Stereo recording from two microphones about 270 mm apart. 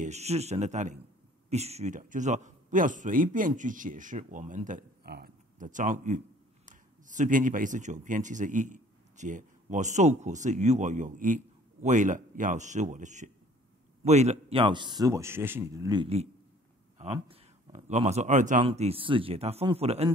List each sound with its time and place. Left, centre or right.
0.0 s a man's voice: right